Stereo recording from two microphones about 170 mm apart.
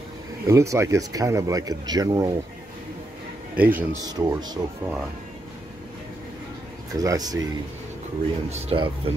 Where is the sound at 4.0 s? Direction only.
20° right (ahead or behind).